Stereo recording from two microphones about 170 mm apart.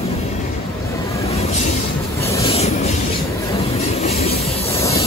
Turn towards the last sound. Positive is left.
turn(degrees=35)  # may be behind; listen again after turning